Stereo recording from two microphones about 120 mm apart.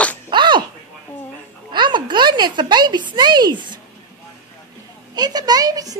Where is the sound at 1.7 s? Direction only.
40° right (ahead or behind).